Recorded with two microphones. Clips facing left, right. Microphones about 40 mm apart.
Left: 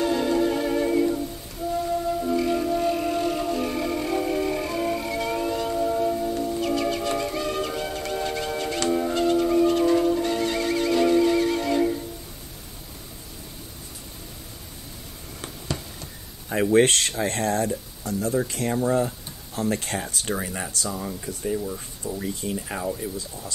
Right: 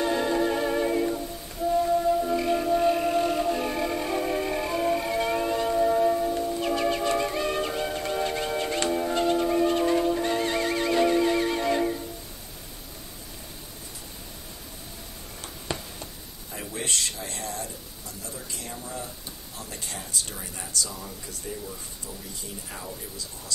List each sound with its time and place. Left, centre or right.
0.0 s music: centre
6.6 s music: centre
8.8 s music: centre
16.4 s speech: left
20.9 s speech: left
22.2 s speech: left
22.8 s speech: left